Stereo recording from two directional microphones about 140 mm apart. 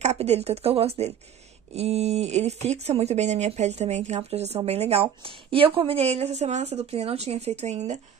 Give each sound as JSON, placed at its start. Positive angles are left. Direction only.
{"t": 0.0, "sound": "speech", "side_deg": -50}